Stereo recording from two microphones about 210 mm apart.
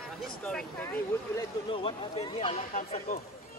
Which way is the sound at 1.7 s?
25° left (ahead or behind).